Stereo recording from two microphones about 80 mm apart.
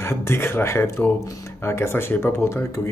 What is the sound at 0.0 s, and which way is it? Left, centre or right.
Speech, left.